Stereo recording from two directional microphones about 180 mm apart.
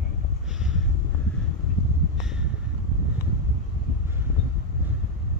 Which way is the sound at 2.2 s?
5° right (ahead or behind).